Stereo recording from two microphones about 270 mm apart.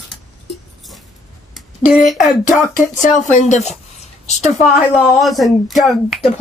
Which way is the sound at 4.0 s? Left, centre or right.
Left.